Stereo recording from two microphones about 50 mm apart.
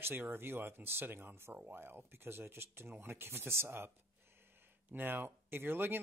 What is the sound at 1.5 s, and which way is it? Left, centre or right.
Speech, right.